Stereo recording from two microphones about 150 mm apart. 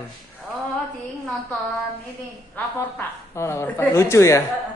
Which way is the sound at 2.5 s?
15° left (ahead or behind).